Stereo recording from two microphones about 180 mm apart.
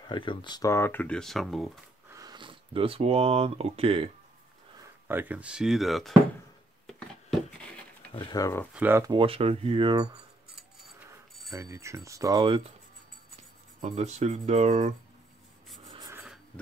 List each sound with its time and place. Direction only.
0.0 s speech: 25° left (ahead or behind); by 1.7 s centre (ahead or behind)
2.1 s speech: 25° right (ahead or behind)
5.0 s speech: 10° right (ahead or behind)
6.9 s a sound: centre (ahead or behind)
8.1 s speech: 20° left (ahead or behind)
8.7 s speech: 10° right (ahead or behind)
9.1 s speech: 30° right (ahead or behind)
11.5 s speech: 15° right (ahead or behind)
13.7 s speech: 40° right (ahead or behind)
15.8 s rub: 20° right (ahead or behind)